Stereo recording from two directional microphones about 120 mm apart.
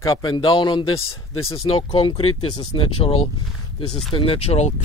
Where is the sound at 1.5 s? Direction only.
55° left (ahead or behind).